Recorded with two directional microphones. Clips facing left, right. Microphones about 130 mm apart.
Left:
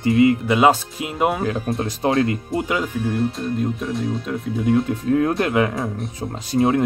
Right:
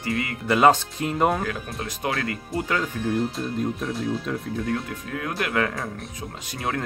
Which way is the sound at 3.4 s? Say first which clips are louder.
Left 3 dB; centre (ahead or behind).